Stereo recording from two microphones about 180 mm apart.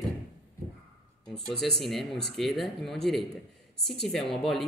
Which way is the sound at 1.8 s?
Centre (ahead or behind).